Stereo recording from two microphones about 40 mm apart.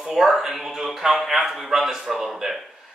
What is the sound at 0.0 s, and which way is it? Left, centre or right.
Speech, centre.